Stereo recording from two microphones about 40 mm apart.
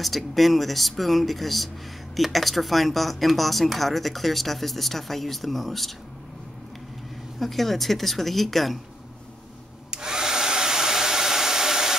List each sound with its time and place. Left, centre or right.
0.0 s speech: centre
7.3 s speech: centre
9.8 s hair dryer: centre